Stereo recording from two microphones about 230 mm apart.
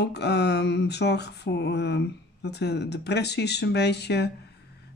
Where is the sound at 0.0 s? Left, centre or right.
Left.